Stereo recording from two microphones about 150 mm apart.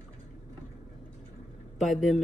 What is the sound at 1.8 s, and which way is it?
Speech, centre (ahead or behind).